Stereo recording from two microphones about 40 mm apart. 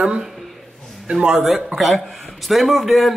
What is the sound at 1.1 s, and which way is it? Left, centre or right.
Speech, centre.